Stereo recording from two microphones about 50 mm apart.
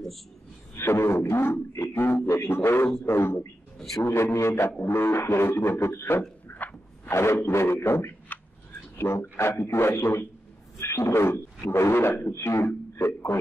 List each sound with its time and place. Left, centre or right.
0.7 s a man's voice: left
1.7 s a sound: left
2.5 s a man's voice: left
6.4 s a sound: left
7.1 s a man's voice: left
10.8 s a man's voice: left
12.4 s a man's voice: left
12.9 s speech: left